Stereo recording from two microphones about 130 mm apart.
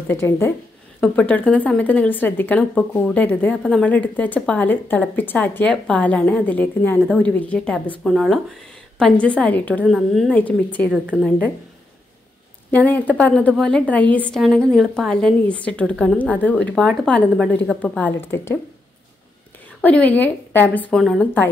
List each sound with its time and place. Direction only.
0.1 s a woman's voice: 20° left (ahead or behind)
9.8 s a woman's voice: centre (ahead or behind)
12.7 s a woman's voice: 10° left (ahead or behind)
19.8 s a woman's voice: 10° left (ahead or behind)